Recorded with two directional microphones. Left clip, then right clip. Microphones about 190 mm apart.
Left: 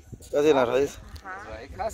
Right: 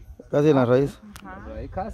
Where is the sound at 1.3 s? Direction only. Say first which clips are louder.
Left 3 dB; 40° right (ahead or behind).